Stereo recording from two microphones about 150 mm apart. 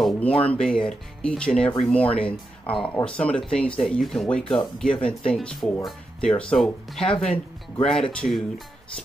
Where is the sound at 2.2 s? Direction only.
35° left (ahead or behind).